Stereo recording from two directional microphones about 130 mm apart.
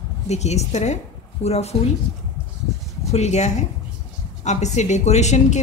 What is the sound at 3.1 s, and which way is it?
A woman's voice, 60° left (ahead or behind).